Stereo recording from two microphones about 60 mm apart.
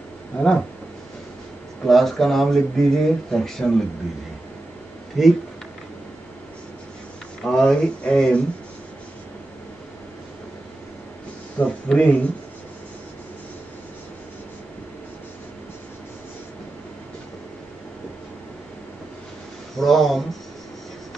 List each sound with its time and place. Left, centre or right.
0.4 s speech: centre
1.9 s speech: centre
5.2 s speech: centre
7.4 s speech: centre
11.6 s a sound: left
12.0 s speech: left
19.8 s speech: centre